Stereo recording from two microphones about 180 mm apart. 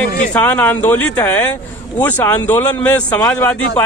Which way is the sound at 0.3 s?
10° left (ahead or behind).